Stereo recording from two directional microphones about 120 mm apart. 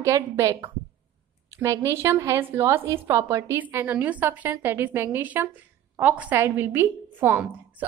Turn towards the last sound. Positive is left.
turn(degrees=-15)  # may be behind; listen again after turning